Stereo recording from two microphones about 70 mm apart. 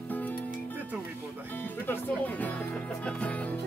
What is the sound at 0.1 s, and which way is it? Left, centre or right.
Music, left.